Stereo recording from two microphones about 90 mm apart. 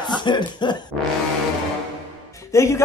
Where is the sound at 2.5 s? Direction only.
30° left (ahead or behind).